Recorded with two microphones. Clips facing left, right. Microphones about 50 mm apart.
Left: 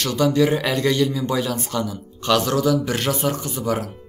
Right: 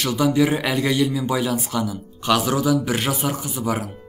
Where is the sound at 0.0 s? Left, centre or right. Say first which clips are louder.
Even; centre.